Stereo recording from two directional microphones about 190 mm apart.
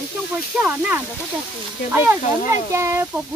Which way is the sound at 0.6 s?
10° right (ahead or behind).